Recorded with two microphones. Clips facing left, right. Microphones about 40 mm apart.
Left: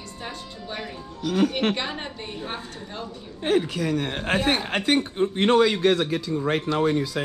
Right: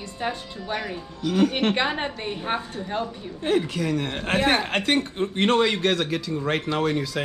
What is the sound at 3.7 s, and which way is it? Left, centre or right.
Speech, right.